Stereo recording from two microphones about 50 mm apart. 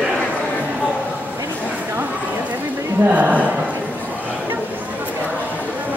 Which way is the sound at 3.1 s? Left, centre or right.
Right.